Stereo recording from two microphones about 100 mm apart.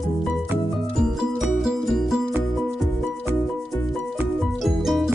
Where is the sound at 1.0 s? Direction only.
5° right (ahead or behind).